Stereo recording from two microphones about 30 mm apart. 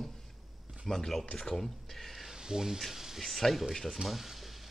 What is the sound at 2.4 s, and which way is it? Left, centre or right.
Speech, right.